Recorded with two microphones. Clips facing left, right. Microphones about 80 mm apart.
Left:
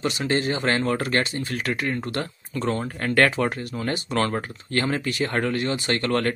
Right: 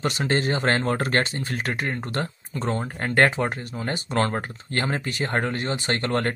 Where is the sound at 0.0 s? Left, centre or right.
Right.